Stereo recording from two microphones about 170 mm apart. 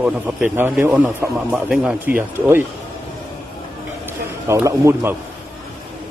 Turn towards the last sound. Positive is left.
turn(degrees=-15)  # may be behind; listen again after turning